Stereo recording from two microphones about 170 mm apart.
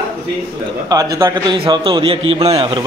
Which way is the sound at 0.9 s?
20° right (ahead or behind).